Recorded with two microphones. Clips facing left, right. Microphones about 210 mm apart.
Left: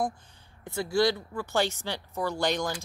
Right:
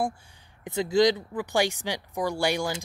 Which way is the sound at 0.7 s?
20° right (ahead or behind).